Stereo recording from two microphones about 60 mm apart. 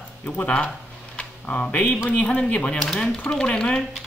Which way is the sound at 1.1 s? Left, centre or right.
Left.